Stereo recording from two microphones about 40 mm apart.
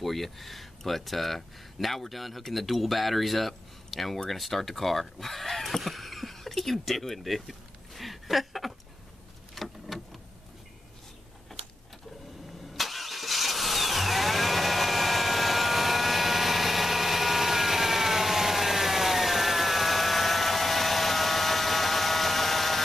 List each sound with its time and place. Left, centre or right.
0.0 s speech: centre
9.6 s a sound: centre
12.7 s vehicle: centre